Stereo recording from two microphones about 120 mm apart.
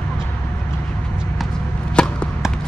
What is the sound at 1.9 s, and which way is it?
Chop, 10° left (ahead or behind).